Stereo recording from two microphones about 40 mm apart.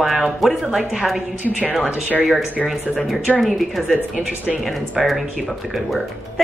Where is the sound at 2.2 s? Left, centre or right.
Centre.